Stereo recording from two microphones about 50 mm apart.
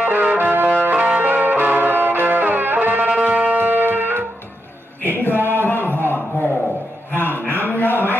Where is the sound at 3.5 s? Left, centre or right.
Right.